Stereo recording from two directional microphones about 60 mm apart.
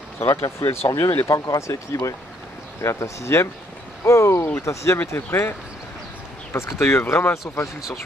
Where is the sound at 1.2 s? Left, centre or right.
Left.